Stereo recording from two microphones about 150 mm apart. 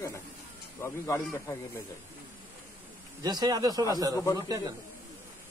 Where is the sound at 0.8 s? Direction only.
20° left (ahead or behind).